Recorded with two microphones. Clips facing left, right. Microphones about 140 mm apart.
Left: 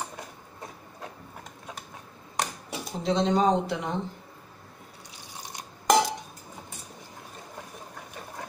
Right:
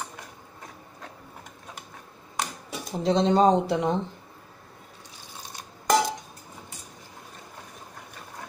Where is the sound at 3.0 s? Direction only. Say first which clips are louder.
Right 3 dB; 30° right (ahead or behind).